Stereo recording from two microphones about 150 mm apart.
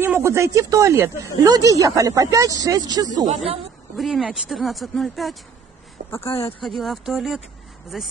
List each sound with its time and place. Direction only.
0.0 s speech: 15° right (ahead or behind)
3.9 s speech: centre (ahead or behind)
6.0 s speech: 15° left (ahead or behind)
6.6 s speech: centre (ahead or behind)